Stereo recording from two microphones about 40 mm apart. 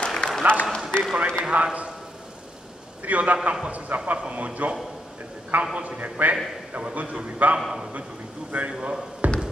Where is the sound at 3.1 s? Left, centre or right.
Right.